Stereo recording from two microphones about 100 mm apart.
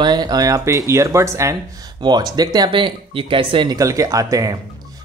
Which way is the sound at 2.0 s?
45° right (ahead or behind).